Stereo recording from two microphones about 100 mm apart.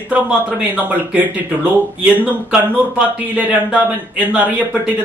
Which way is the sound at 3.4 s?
15° right (ahead or behind).